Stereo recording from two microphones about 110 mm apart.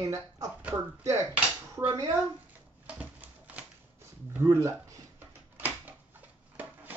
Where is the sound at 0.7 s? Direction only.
30° right (ahead or behind).